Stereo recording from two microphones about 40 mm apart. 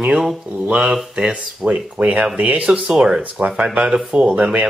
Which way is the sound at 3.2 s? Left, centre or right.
Right.